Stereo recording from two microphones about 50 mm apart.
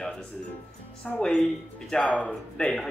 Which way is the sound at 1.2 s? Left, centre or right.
Centre.